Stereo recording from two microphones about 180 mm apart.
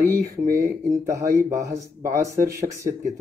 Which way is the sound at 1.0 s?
15° right (ahead or behind).